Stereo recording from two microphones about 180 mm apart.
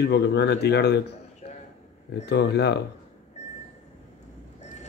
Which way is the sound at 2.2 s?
70° left (ahead or behind).